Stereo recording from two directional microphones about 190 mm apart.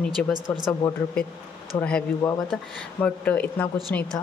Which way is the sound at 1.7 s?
20° left (ahead or behind).